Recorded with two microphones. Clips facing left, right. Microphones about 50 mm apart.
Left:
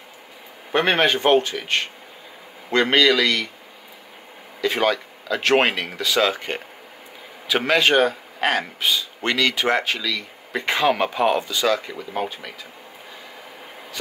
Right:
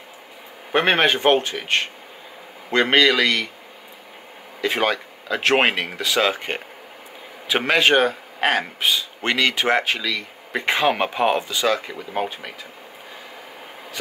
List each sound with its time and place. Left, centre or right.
0.7 s speech: centre
4.6 s speech: centre